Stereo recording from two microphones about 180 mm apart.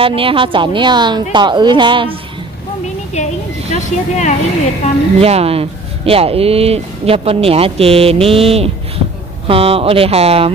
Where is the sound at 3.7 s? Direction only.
40° left (ahead or behind).